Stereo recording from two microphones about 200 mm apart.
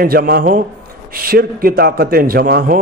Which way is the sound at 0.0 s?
50° right (ahead or behind).